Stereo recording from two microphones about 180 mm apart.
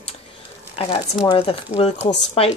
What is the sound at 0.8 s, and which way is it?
Speech, 30° left (ahead or behind).